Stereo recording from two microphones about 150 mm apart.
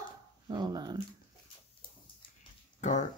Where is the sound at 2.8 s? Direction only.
50° left (ahead or behind).